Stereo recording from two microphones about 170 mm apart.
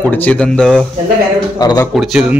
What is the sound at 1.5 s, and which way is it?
Speech, 20° left (ahead or behind).